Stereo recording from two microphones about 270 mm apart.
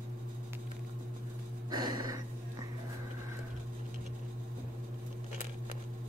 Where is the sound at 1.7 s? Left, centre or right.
Centre.